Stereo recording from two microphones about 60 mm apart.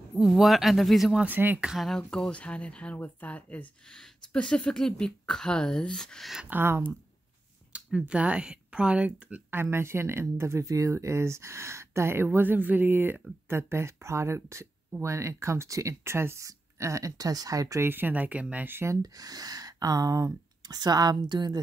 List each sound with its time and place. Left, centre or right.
0.2 s speech: centre
1.3 s speech: right
1.8 s speech: centre; by 3.6 s left
4.3 s speech: centre
6.5 s speech: right
7.7 s speech: centre
9.6 s speech: right
10.6 s speech: right
13.5 s speech: right
16.4 s speech: right
17.7 s speech: right
19.1 s speech: right